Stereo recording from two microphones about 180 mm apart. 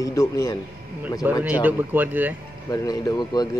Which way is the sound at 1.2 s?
10° right (ahead or behind).